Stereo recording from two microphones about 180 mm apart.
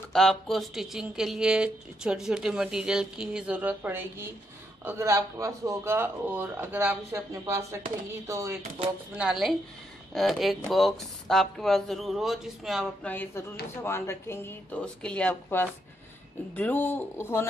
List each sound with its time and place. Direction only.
0.1 s speech: centre (ahead or behind); by 8.5 s 15° right (ahead or behind)
9.1 s speech: 5° right (ahead or behind)
13.1 s speech: 10° left (ahead or behind)